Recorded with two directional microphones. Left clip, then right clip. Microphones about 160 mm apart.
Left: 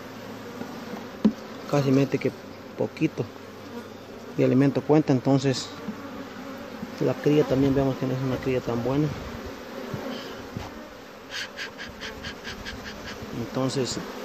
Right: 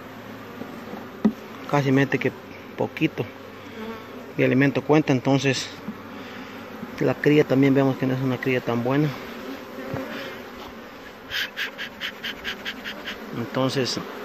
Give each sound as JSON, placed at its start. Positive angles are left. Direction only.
{"t": 1.2, "sound": "insect", "side_deg": 10}
{"t": 2.8, "sound": "speech", "side_deg": 10}
{"t": 4.4, "sound": "speech", "side_deg": 20}
{"t": 7.1, "sound": "speech", "side_deg": -5}
{"t": 11.3, "sound": "a sound", "side_deg": 15}
{"t": 13.5, "sound": "speech", "side_deg": 5}